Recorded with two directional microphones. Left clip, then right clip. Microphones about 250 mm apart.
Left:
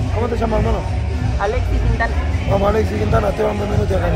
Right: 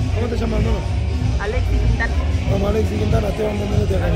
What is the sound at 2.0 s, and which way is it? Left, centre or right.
Speech, centre.